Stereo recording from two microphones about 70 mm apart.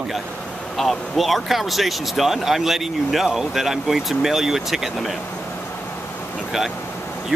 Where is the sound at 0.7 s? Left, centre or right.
Centre.